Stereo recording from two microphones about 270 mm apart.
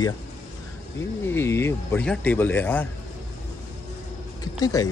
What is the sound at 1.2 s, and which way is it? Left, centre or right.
Speech, centre.